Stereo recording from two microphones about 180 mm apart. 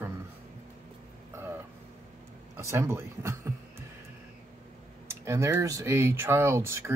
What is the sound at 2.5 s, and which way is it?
Speech, 15° right (ahead or behind).